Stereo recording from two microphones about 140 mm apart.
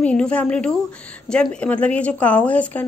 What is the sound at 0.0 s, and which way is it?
A woman's voice, 10° left (ahead or behind).